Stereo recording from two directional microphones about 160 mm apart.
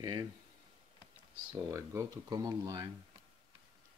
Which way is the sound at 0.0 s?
25° right (ahead or behind).